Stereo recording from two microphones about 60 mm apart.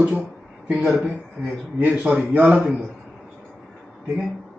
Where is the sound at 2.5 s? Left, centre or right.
Centre.